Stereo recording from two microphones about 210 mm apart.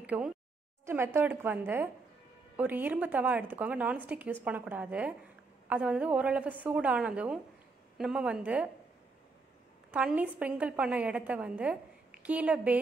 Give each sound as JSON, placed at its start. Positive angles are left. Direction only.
{"t": 0.0, "sound": "a woman's voice", "side_deg": -5}
{"t": 9.8, "sound": "a woman's voice", "side_deg": -5}